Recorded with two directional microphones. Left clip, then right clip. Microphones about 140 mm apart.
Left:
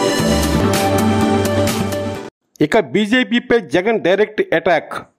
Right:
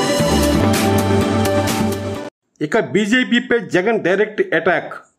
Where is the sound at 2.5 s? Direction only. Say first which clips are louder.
Left 3 dB; 35° left (ahead or behind).